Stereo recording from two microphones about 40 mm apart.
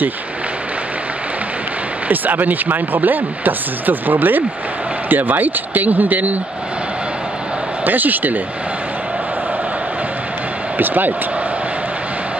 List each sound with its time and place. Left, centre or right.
2.0 s speech: right
7.8 s speech: right
10.8 s speech: right